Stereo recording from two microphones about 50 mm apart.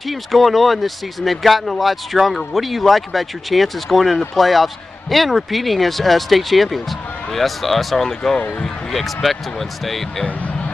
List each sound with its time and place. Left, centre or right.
0.1 s speech: centre
10.2 s music: left